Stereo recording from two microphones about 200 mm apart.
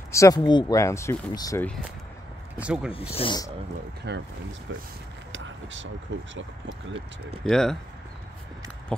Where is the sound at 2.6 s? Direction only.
5° right (ahead or behind).